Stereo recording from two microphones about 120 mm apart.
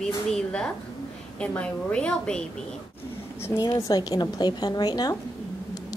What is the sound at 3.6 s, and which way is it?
A woman's voice, 35° left (ahead or behind).